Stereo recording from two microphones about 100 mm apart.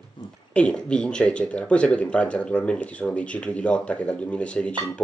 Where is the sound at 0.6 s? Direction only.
10° left (ahead or behind).